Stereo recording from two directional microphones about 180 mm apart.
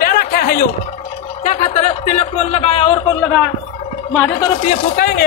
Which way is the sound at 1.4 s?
40° left (ahead or behind).